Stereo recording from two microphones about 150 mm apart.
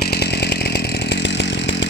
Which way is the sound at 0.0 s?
90° left.